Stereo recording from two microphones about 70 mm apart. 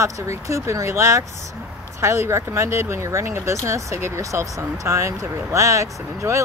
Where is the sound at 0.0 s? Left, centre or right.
Right.